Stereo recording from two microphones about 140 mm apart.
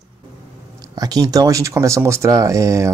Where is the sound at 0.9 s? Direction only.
25° right (ahead or behind).